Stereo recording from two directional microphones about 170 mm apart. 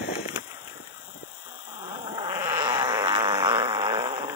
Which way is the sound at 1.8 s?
25° right (ahead or behind).